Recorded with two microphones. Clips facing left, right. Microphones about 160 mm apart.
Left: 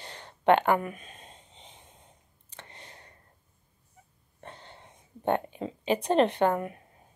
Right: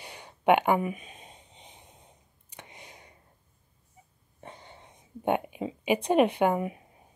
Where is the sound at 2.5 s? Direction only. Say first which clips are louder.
Right 1 dB; 15° right (ahead or behind).